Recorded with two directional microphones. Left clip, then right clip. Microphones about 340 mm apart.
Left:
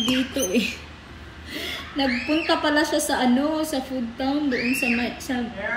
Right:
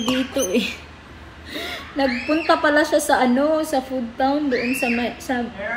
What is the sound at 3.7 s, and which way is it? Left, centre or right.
A woman's voice, centre.